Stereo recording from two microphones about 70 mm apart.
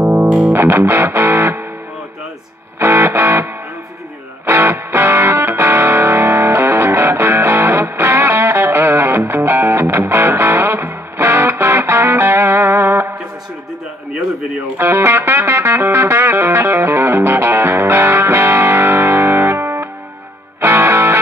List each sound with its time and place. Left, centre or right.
0.0 s music: right
0.5 s music: right
2.8 s music: right
4.5 s music: right
14.8 s music: right